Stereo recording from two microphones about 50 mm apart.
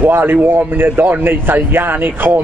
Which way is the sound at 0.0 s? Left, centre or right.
Right.